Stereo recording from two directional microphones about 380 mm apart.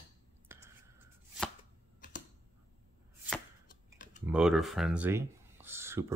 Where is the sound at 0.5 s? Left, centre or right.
Centre.